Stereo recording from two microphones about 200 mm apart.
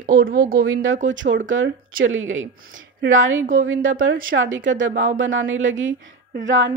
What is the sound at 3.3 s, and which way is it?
Speech, 45° right (ahead or behind).